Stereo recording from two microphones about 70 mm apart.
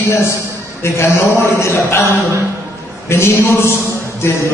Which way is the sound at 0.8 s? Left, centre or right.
Left.